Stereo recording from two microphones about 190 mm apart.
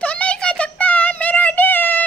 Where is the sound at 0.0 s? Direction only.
5° left (ahead or behind).